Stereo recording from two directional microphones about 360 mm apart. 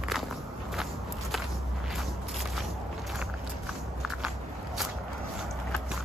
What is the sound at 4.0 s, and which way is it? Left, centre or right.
Walk, centre.